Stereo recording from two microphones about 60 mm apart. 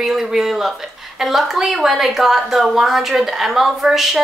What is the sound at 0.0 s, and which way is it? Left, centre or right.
A woman's voice, centre.